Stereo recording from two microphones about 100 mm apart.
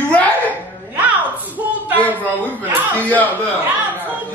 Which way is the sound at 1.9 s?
15° left (ahead or behind).